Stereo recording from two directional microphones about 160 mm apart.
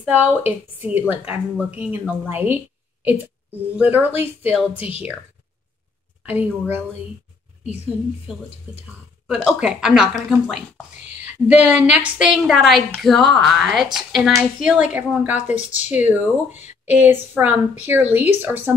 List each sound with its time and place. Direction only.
0.0 s a woman's voice: 10° right (ahead or behind)
6.2 s speech: 10° right (ahead or behind)
8.3 s a woman's voice: centre (ahead or behind)
15.4 s speech: 50° left (ahead or behind)
15.9 s a woman's voice: 10° right (ahead or behind)